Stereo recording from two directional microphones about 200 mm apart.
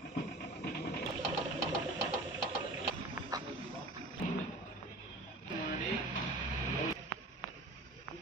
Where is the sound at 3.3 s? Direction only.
20° right (ahead or behind).